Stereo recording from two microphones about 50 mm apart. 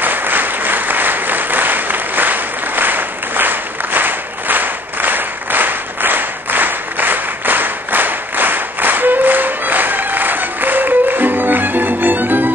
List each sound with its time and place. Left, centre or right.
0.0 s applause: right